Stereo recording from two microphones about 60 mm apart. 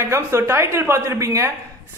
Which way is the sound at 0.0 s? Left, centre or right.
Right.